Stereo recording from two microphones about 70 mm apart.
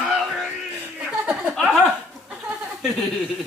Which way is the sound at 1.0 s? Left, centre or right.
Centre.